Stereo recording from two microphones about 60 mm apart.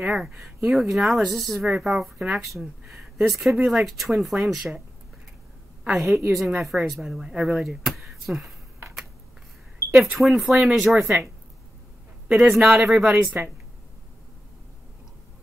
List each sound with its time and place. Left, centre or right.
0.0 s speech: centre
5.9 s speech: centre
7.5 s speech: centre
9.8 s a sound: right
10.2 s speech: centre
10.5 s speech: centre
12.5 s speech: centre
13.4 s speech: right